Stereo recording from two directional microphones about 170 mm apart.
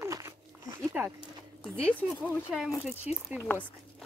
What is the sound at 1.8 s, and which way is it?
Speech, 5° left (ahead or behind).